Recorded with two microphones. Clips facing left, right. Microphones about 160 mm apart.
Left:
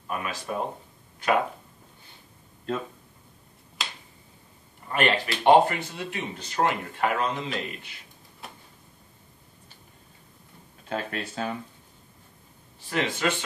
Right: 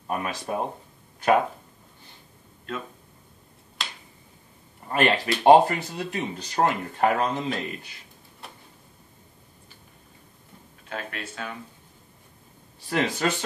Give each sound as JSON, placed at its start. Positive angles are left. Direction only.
{"t": 0.1, "sound": "speech", "side_deg": -35}
{"t": 3.8, "sound": "finger snapping", "side_deg": 0}
{"t": 4.8, "sound": "speech", "side_deg": -35}
{"t": 8.4, "sound": "a sound", "side_deg": 0}
{"t": 10.9, "sound": "speech", "side_deg": 35}
{"t": 12.9, "sound": "speech", "side_deg": -40}